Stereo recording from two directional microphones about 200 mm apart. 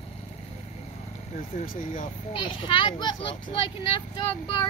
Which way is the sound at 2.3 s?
25° left (ahead or behind).